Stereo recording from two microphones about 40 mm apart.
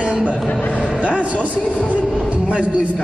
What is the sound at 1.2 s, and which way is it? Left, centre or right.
A man's voice, right.